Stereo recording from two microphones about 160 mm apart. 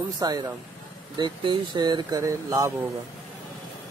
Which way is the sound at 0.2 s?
25° right (ahead or behind).